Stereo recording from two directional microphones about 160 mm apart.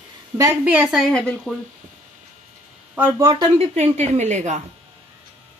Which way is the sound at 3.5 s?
45° right (ahead or behind).